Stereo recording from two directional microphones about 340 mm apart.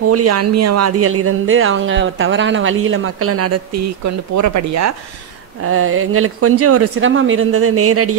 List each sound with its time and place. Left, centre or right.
0.1 s speech: right
5.7 s speech: right